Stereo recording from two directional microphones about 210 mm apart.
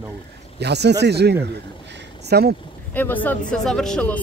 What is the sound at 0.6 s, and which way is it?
Speech, 55° right (ahead or behind).